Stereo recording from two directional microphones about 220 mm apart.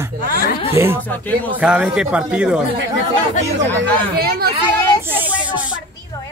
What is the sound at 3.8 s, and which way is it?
Speech, 45° right (ahead or behind).